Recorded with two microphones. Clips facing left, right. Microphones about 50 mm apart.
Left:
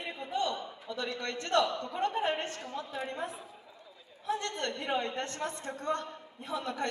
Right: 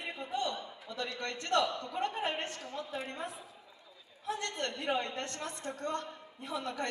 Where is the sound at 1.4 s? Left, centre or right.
Left.